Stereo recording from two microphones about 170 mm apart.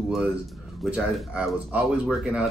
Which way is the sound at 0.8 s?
5° right (ahead or behind).